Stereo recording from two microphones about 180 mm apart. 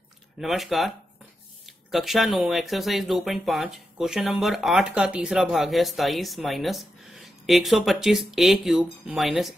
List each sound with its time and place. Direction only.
0.4 s speech: centre (ahead or behind)